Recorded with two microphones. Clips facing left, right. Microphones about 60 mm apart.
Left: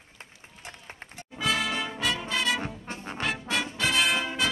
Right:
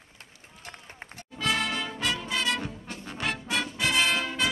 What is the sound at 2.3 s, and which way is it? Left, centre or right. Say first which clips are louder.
Brass instrument: left 1 dB; centre.